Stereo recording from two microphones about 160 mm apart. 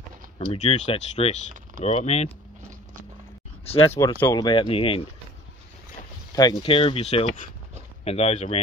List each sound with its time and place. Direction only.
0.5 s speech: 40° left (ahead or behind)
3.6 s speech: 40° left (ahead or behind)
4.0 s speech: 20° left (ahead or behind)
6.3 s speech: 30° left (ahead or behind)